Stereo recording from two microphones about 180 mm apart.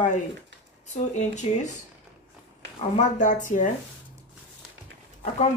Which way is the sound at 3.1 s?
45° left (ahead or behind).